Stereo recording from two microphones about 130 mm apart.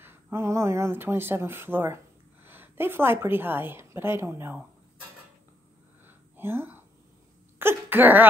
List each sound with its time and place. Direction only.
0.0 s a woman's voice: 20° right (ahead or behind)
6.0 s a sound: 15° right (ahead or behind)
7.5 s speech: 15° right (ahead or behind)